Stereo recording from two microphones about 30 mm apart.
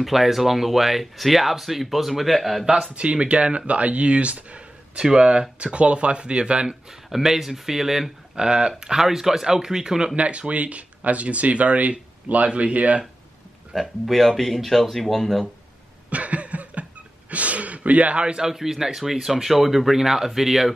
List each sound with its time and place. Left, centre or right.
0.0 s speech: centre
2.9 s speech: right
5.1 s speech: right
7.1 s speech: centre
8.4 s speech: right
9.0 s speech: centre
10.1 s speech: right
13.7 s speech: centre
16.1 s cough: right
17.3 s a sound: right
18.2 s speech: right
18.5 s speech: centre